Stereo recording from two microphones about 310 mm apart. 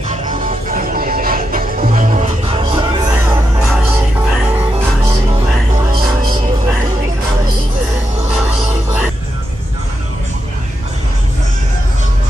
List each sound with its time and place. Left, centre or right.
0.1 s music: right